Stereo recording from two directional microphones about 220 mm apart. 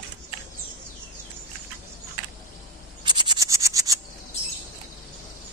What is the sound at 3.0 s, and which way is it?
Frog, 20° right (ahead or behind).